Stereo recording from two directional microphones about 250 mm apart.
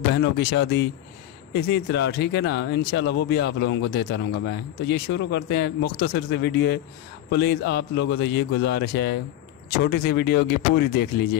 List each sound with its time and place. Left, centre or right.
0.1 s speech: left